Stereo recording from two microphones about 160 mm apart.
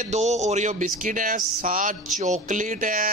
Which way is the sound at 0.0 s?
45° right (ahead or behind).